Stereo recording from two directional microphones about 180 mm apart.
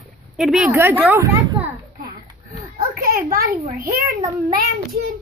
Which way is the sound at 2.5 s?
50° right (ahead or behind).